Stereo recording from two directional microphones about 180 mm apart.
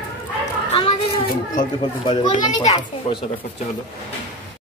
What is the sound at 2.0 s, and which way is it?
Speech, 25° left (ahead or behind).